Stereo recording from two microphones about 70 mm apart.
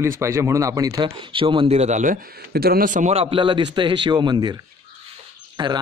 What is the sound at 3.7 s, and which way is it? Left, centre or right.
A man's voice, right.